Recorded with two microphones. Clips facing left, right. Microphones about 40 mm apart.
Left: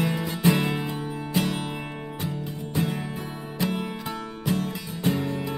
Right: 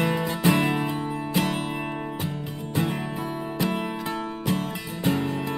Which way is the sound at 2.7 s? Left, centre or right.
Centre.